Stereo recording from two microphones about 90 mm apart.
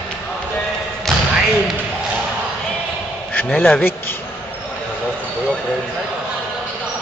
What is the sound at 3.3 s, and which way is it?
Speech, 20° left (ahead or behind).